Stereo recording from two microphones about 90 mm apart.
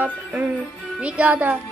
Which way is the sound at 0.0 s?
20° right (ahead or behind).